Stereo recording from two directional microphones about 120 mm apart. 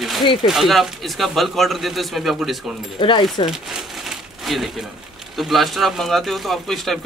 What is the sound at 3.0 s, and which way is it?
Speech, 40° left (ahead or behind).